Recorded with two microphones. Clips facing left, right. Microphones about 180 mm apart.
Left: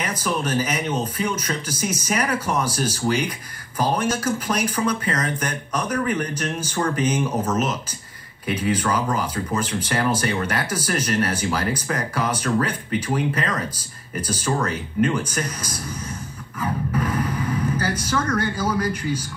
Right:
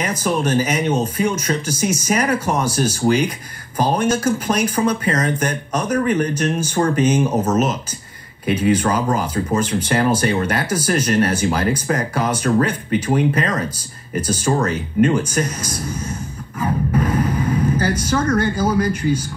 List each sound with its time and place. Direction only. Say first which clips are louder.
0.0 s speech: right 5 dB; 45° right (ahead or behind)